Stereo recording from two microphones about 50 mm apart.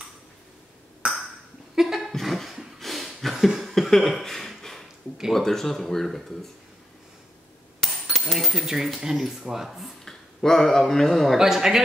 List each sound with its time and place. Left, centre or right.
1.0 s ping: centre
2.0 s a sound: centre
5.3 s speech: centre
8.2 s speech: centre
10.0 s speech: centre
11.3 s speech: centre